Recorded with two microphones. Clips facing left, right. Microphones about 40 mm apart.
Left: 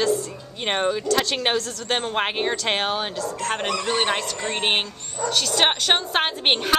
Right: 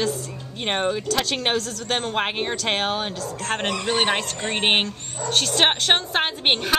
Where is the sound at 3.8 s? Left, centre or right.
Right.